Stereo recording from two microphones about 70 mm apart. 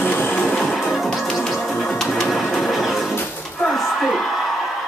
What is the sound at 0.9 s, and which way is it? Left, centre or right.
Music, centre.